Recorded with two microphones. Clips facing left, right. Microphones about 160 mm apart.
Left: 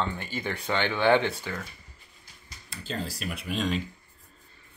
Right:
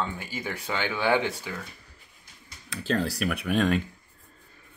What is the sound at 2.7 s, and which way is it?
Speech, 70° right (ahead or behind).